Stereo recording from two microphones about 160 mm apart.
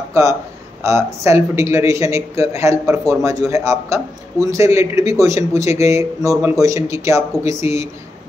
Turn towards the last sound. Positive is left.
turn(degrees=-20)  # may be behind; listen again after turning